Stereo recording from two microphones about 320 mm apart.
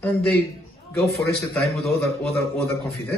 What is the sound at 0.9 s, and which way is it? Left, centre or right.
A man's voice, centre.